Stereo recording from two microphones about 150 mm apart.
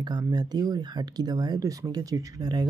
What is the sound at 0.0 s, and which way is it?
Speech, 25° right (ahead or behind).